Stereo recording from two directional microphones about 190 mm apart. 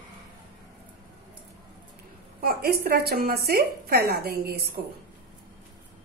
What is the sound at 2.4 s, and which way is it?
Speech, 55° right (ahead or behind).